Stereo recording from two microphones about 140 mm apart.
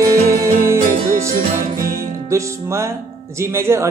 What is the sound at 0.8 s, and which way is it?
Music, 65° right (ahead or behind).